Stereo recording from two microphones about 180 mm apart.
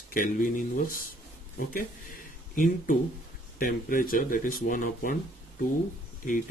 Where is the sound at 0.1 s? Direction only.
50° left (ahead or behind).